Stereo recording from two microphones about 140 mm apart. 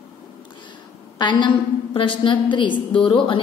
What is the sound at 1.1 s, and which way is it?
A woman's voice, 35° left (ahead or behind).